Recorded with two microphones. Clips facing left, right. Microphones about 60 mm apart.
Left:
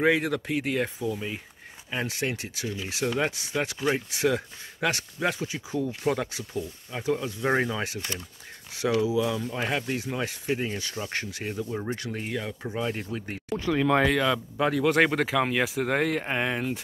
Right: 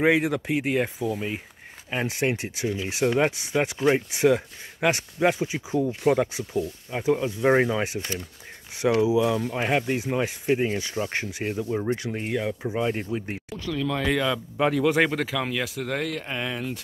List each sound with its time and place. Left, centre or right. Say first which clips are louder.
0.0 s speech: right 2 dB; centre
11.4 s speech: right 7 dB; centre
13.6 s speech: left 5 dB; left
14.0 s speech: left 1 dB; centre; by 16.6 s left